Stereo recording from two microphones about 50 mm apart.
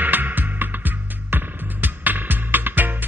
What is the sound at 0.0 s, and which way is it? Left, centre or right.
Music, right.